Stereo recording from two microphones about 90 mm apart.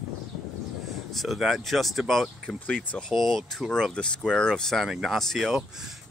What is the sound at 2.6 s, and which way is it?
Speech, 20° left (ahead or behind).